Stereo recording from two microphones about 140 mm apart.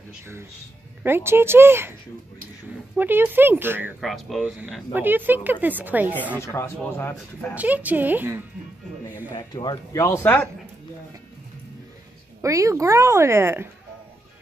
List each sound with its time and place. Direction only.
1.0 s a woman's voice: 15° right (ahead or behind)
3.0 s a woman's voice: 15° right (ahead or behind)
4.0 s speech: centre (ahead or behind)
4.9 s a woman's voice: 15° right (ahead or behind)
6.4 s speech: 20° left (ahead or behind)
7.5 s a woman's voice: 10° right (ahead or behind)
9.3 s speech: 30° left (ahead or behind); by 10.5 s 15° left (ahead or behind)
12.4 s speech: 20° right (ahead or behind)